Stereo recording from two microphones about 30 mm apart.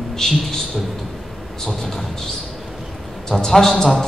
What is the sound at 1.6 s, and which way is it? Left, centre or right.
Speech, centre.